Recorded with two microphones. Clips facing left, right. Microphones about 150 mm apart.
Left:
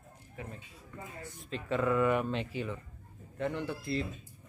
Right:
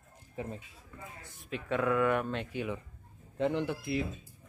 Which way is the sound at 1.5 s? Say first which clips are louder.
Even; centre (ahead or behind).